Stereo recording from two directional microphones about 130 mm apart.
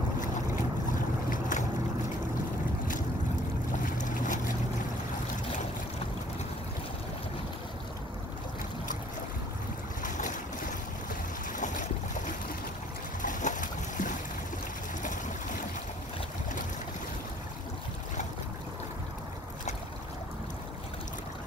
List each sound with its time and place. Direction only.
1.5 s boat: 75° left (ahead or behind)
4.0 s boat: 85° left
10.0 s boat: 80° left
13.2 s boat: 80° left
15.0 s a sound: 80° left